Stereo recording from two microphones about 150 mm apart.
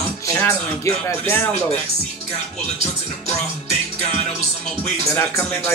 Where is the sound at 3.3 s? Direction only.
50° left (ahead or behind).